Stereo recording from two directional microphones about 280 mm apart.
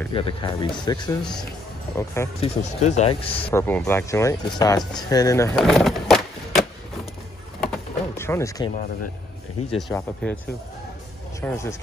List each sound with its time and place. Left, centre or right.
0.1 s speech: centre
1.2 s speech: centre
2.4 s speech: left
3.4 s speech: centre
7.6 s a sound: centre
9.8 s speech: centre
11.4 s speech: centre